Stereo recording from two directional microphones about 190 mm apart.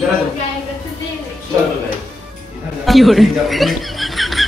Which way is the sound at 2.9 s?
Centre (ahead or behind).